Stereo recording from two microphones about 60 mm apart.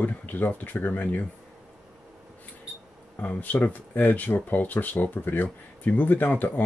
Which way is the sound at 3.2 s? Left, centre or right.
Left.